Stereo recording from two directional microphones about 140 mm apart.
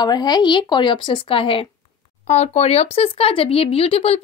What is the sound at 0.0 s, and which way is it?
Speech, 30° left (ahead or behind).